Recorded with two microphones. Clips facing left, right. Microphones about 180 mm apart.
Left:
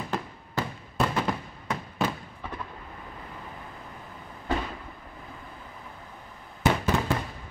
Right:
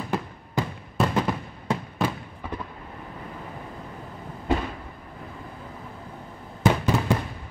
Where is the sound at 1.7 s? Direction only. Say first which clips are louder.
Right 5 dB; 30° right (ahead or behind).